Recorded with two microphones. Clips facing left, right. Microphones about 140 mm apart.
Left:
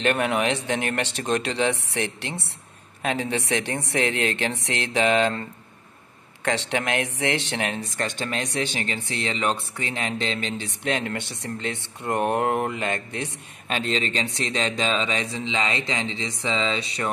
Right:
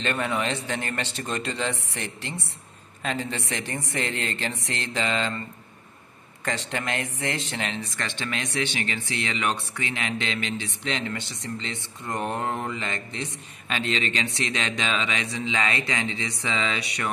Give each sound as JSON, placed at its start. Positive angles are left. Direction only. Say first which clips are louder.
{"t": 0.0, "sound": "speech", "louder": "left 4 dB", "side_deg": 65}
{"t": 6.4, "sound": "speech", "louder": "left 4 dB", "side_deg": 75}
{"t": 10.8, "sound": "speech", "louder": "left 6 dB", "side_deg": 50}